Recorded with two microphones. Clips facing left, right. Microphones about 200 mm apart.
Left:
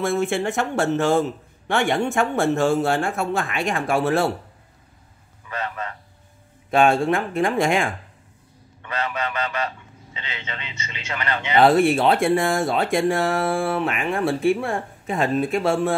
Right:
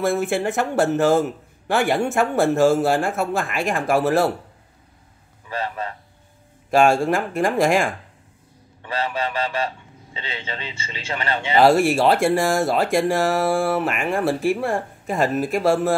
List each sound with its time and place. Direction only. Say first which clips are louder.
0.0 s speech: right 1 dB; centre (ahead or behind)
5.5 s a sound: right 2 dB; 30° right (ahead or behind)
6.7 s speech: right 1 dB; centre (ahead or behind)
8.8 s a man's voice: right 2 dB; 30° right (ahead or behind)
11.5 s speech: even; centre (ahead or behind)